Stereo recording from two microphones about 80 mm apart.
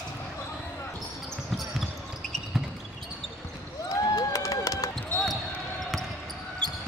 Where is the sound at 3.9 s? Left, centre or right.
Left.